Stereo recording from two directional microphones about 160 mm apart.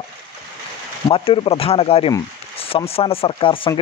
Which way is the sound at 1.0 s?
35° left (ahead or behind).